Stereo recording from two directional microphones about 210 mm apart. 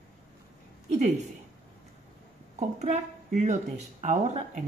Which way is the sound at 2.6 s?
35° right (ahead or behind).